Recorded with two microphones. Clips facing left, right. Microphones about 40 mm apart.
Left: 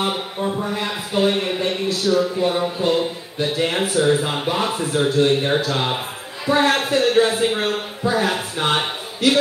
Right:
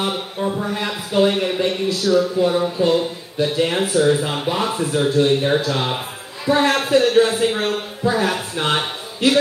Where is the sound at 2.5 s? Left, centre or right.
Centre.